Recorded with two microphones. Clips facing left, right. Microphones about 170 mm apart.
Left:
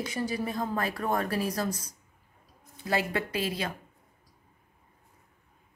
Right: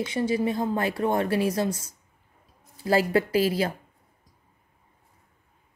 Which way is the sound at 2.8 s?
30° right (ahead or behind).